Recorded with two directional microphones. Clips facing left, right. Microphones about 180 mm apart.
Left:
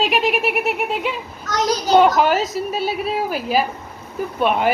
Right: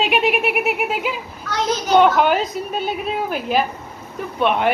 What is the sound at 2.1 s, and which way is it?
A woman's voice, 5° left (ahead or behind).